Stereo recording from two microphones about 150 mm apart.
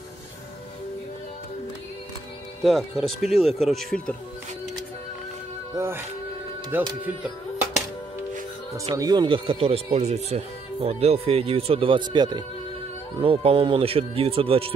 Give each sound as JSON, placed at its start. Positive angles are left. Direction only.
{"t": 2.6, "sound": "speech", "side_deg": 0}
{"t": 5.8, "sound": "speech", "side_deg": -15}
{"t": 8.9, "sound": "speech", "side_deg": -25}